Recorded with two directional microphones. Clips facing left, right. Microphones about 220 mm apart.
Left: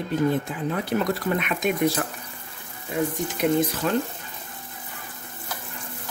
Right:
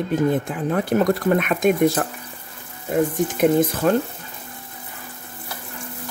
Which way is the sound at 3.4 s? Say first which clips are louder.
Right 4 dB; 50° right (ahead or behind).